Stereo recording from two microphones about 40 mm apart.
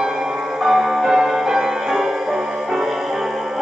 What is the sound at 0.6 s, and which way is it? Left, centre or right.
Music, centre.